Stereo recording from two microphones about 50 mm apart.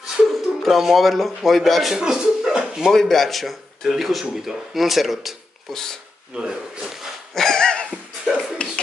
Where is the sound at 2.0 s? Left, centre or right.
Centre.